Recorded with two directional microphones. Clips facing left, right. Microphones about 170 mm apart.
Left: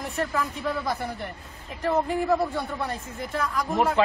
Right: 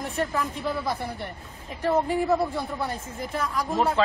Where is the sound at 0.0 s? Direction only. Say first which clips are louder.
Even; centre (ahead or behind).